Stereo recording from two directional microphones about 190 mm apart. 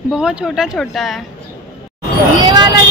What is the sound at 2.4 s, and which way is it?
Vehicle, 20° right (ahead or behind).